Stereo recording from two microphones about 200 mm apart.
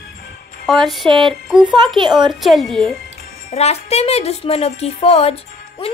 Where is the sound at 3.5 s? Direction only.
30° left (ahead or behind).